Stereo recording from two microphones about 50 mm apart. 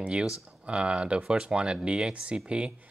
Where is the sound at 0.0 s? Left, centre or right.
Right.